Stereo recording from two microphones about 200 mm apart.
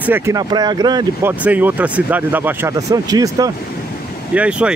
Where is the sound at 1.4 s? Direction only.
10° right (ahead or behind).